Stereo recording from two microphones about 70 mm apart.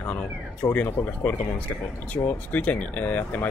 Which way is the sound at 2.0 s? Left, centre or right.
Left.